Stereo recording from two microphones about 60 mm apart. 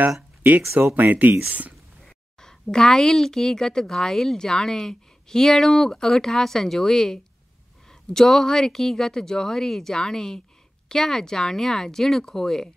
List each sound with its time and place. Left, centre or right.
0.4 s speech: right
2.4 s a woman's voice: centre